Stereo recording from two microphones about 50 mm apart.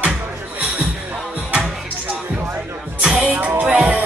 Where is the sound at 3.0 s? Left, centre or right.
Right.